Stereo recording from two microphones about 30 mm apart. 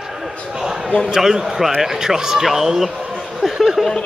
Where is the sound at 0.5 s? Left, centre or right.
Centre.